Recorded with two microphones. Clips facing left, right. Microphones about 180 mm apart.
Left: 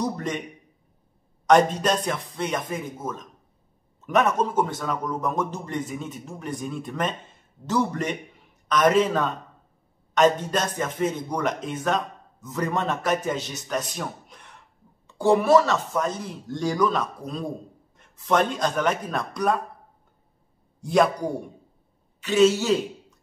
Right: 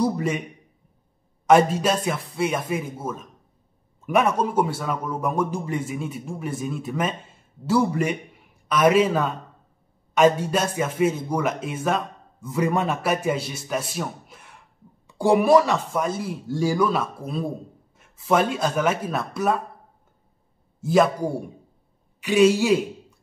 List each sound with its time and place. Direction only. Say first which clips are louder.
0.0 s speech: right 4 dB; 10° right (ahead or behind)
1.5 s speech: right 1 dB; 5° right (ahead or behind)
20.8 s a man's voice: right 2 dB; centre (ahead or behind)